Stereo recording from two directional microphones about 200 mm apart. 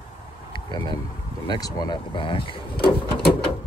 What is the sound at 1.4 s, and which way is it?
Speech, 20° left (ahead or behind).